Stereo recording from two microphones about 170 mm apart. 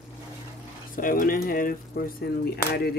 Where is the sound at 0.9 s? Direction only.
55° left (ahead or behind).